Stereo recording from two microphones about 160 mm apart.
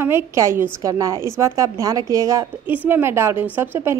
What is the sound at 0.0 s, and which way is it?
A woman's voice, 15° right (ahead or behind).